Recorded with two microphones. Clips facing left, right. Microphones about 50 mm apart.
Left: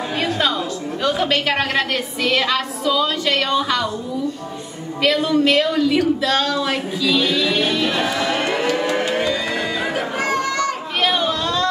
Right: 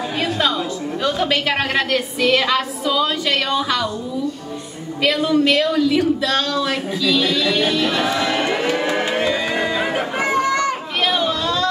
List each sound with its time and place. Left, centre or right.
0.2 s a sound: centre
1.0 s speech: centre
5.0 s speech: centre
8.6 s music: centre
9.9 s chatter: right
11.0 s chatter: centre